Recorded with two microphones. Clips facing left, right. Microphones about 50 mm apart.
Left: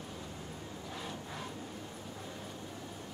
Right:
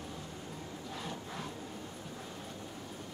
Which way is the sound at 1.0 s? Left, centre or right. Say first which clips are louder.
Right 1 dB; centre.